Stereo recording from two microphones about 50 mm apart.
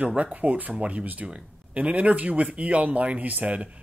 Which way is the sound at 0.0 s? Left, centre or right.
Right.